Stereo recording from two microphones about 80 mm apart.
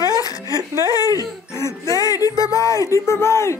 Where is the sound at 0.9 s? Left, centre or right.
Left.